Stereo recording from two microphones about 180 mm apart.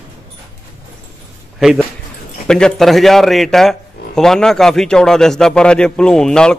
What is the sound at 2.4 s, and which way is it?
A man's voice, 5° left (ahead or behind).